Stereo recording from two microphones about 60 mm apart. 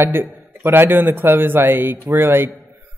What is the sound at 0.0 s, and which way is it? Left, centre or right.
A man's voice, right.